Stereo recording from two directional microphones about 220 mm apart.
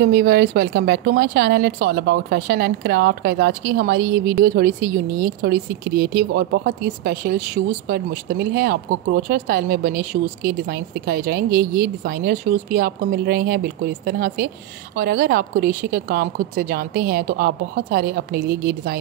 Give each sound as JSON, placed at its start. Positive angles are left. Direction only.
{"t": 0.0, "sound": "a woman's voice", "side_deg": -45}